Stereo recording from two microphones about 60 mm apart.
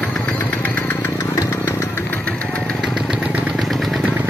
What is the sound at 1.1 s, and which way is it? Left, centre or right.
Engine, left.